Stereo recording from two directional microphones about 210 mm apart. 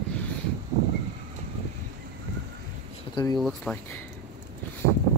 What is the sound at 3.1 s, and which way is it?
Speech, 20° left (ahead or behind).